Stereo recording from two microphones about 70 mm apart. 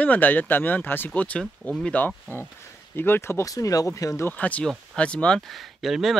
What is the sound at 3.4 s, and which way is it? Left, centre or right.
Speech, left.